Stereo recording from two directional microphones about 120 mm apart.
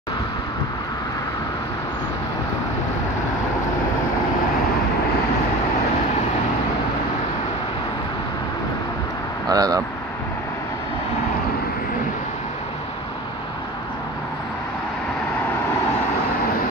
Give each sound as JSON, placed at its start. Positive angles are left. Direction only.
{"t": 9.5, "sound": "vehicle", "side_deg": -30}